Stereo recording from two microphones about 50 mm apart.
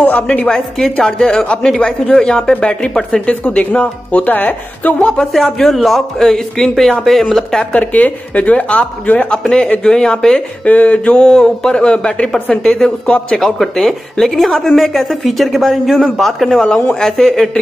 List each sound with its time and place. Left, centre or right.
0.0 s a sound: left
0.5 s a man's voice: centre
0.9 s a man's voice: centre
5.2 s a man's voice: centre
7.7 s speech: left
9.5 s a man's voice: centre
10.6 s a man's voice: left
13.4 s a man's voice: centre
16.6 s a man's voice: centre